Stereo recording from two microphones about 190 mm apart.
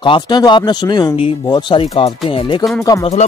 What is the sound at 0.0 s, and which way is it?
Speech, 25° left (ahead or behind).